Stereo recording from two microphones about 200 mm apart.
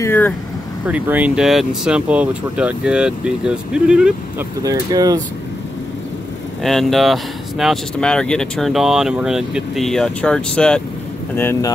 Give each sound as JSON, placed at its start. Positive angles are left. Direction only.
{"t": 0.0, "sound": "speech", "side_deg": 10}
{"t": 0.8, "sound": "speech", "side_deg": -10}
{"t": 4.6, "sound": "speech", "side_deg": -20}
{"t": 6.6, "sound": "speech", "side_deg": 0}